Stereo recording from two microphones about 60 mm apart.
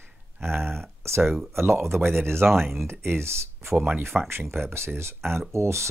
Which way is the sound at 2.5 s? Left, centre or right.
Centre.